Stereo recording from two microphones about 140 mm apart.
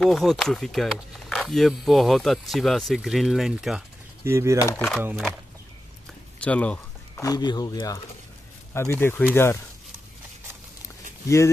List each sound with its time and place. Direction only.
0.0 s speech: centre (ahead or behind)
4.2 s speech: 20° right (ahead or behind)
4.7 s speech: 10° left (ahead or behind)
6.4 s speech: 10° left (ahead or behind)
7.2 s speech: 25° left (ahead or behind)
11.2 s speech: 20° left (ahead or behind)